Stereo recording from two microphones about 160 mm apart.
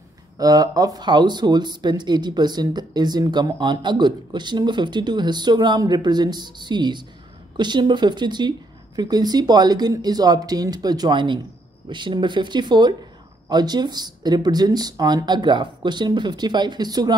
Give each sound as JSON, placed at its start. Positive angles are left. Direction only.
{"t": 0.4, "sound": "speech", "side_deg": -25}